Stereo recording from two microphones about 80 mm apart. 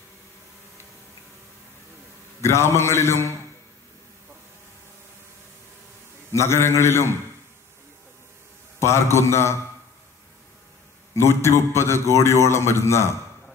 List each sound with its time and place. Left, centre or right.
2.4 s a man's voice: left
6.3 s a man's voice: left
8.7 s a man's voice: left
11.1 s a man's voice: left